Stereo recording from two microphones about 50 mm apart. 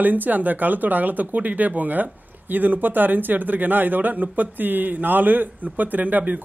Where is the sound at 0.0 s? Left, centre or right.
Right.